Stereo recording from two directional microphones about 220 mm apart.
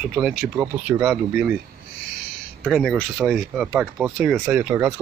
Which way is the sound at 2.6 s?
Centre (ahead or behind).